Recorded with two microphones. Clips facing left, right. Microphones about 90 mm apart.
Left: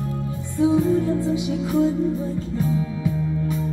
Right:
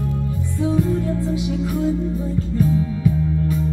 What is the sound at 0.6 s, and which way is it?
Music, 20° left (ahead or behind).